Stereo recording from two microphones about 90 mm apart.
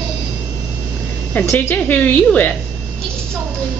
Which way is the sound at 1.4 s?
25° left (ahead or behind).